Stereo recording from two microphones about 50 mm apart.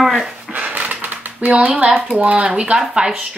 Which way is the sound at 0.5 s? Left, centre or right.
Right.